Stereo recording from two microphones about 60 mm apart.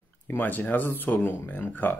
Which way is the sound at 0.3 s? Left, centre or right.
Left.